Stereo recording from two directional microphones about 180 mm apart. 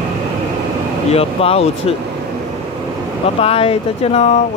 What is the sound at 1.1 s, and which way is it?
Speech, 35° left (ahead or behind).